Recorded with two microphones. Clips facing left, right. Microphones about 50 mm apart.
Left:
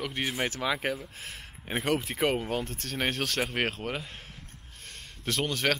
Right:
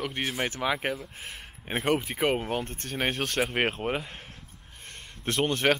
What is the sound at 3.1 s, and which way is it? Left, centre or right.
Speech, centre.